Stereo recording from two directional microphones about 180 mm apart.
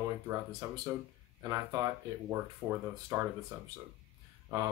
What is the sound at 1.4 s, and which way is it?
Speech, 20° right (ahead or behind).